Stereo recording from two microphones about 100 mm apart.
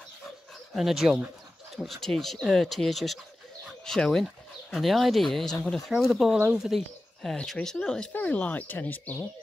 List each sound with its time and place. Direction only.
0.7 s speech: centre (ahead or behind)
8.1 s speech: 15° left (ahead or behind)